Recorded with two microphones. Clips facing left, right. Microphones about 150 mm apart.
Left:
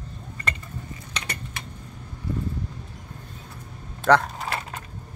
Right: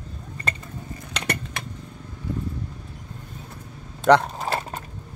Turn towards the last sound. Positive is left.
turn(degrees=-35)  # may be behind; listen again after turning